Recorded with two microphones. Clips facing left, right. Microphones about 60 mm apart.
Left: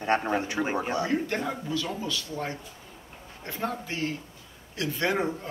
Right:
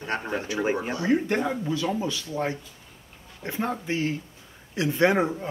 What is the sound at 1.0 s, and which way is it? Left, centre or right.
Speech, centre.